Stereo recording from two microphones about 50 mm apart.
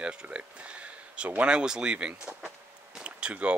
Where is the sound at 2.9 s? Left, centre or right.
Right.